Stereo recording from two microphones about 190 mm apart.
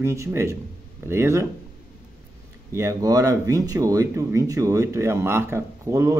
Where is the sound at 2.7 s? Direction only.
15° right (ahead or behind).